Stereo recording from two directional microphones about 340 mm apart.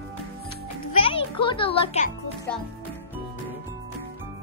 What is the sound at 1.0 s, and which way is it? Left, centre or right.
Music, centre.